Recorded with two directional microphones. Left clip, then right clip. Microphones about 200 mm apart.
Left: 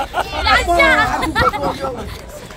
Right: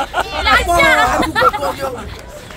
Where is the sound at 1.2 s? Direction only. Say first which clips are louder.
Right 3 dB; 10° left (ahead or behind).